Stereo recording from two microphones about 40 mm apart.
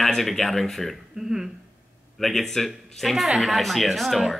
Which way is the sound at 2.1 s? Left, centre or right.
Centre.